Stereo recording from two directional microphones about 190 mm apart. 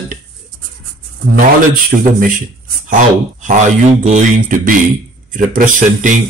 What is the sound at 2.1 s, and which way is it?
A man's voice, 45° right (ahead or behind).